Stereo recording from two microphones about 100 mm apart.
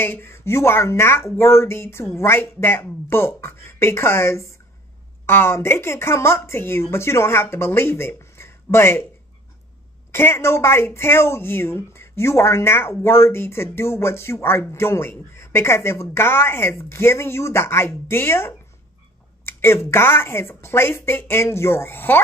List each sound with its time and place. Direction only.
0.0 s speech: 25° left (ahead or behind)
10.1 s speech: 25° left (ahead or behind)